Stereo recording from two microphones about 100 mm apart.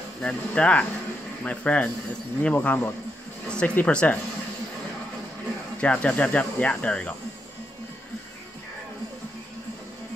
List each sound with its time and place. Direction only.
0.2 s speech: 10° left (ahead or behind)
5.8 s speech: 10° left (ahead or behind)